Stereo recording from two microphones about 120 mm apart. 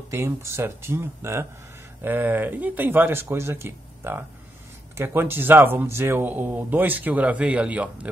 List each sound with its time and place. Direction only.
0.1 s speech: 20° right (ahead or behind)